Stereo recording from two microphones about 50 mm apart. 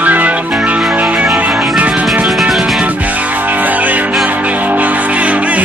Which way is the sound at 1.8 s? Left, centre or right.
Right.